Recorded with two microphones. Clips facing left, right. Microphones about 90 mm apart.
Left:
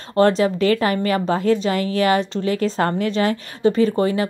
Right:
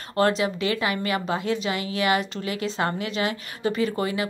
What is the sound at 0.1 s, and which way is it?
A woman's voice, 35° left (ahead or behind).